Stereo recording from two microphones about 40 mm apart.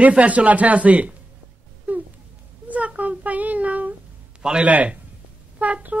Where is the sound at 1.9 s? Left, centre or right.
Right.